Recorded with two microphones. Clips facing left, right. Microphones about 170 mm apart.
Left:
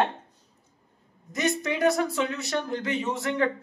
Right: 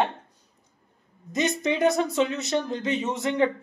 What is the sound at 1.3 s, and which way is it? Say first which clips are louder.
Speech: right 2 dB; 20° right (ahead or behind).